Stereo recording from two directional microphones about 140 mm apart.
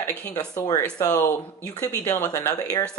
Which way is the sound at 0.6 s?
25° left (ahead or behind).